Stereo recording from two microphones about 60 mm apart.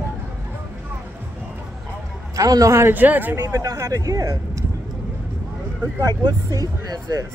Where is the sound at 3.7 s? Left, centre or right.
Right.